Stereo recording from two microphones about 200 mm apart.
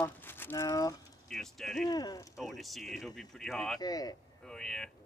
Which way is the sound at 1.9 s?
20° left (ahead or behind).